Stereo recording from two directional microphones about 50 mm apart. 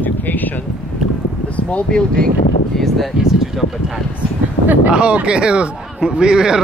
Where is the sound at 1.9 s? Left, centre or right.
Centre.